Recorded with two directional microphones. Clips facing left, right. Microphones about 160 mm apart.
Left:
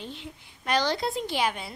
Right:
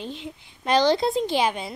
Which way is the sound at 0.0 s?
20° right (ahead or behind).